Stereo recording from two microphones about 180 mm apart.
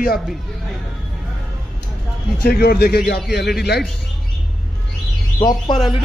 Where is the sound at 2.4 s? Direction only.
60° left (ahead or behind).